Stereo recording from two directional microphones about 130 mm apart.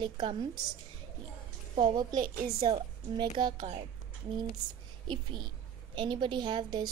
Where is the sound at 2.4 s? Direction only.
45° right (ahead or behind).